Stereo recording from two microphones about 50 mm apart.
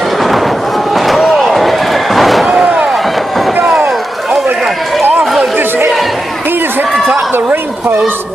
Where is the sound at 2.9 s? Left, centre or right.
Centre.